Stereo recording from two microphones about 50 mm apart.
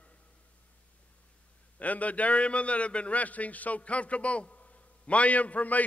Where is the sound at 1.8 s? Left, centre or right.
Left.